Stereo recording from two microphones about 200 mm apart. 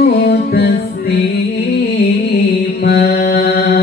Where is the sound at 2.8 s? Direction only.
55° left (ahead or behind).